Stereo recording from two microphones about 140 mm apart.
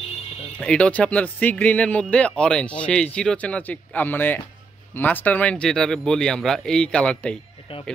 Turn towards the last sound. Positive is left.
turn(degrees=40)  # may be behind; listen again after turning